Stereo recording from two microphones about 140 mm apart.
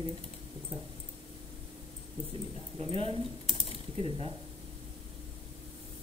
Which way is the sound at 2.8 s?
45° right (ahead or behind).